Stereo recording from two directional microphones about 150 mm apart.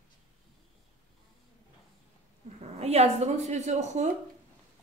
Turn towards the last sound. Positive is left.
turn(degrees=-50)  # may be behind; listen again after turning